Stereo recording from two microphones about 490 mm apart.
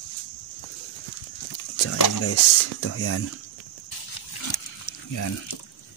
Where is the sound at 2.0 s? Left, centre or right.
Left.